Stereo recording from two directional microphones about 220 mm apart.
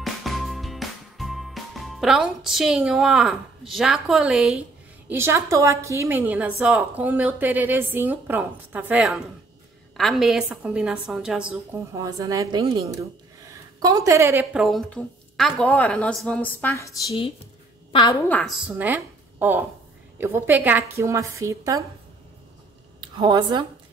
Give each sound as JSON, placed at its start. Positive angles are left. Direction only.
{"t": 0.0, "sound": "music", "side_deg": 0}
{"t": 5.0, "sound": "a woman's voice", "side_deg": -10}
{"t": 11.9, "sound": "a woman's voice", "side_deg": -15}
{"t": 14.4, "sound": "speech", "side_deg": 0}
{"t": 18.3, "sound": "a woman's voice", "side_deg": 0}
{"t": 22.9, "sound": "a woman's voice", "side_deg": -20}